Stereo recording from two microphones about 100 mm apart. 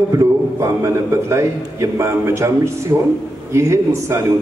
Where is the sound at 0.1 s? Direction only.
30° right (ahead or behind).